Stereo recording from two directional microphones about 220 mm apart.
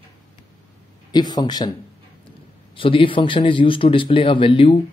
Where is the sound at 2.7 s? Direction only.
25° left (ahead or behind).